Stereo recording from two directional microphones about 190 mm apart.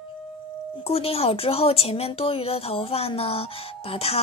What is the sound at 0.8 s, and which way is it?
Speech, 30° left (ahead or behind).